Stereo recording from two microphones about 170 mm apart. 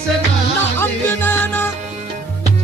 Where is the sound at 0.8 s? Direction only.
15° left (ahead or behind).